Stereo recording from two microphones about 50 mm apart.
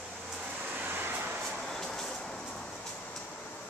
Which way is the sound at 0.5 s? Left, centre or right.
Right.